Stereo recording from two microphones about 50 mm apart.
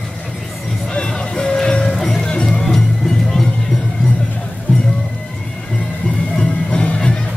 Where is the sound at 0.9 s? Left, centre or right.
Centre.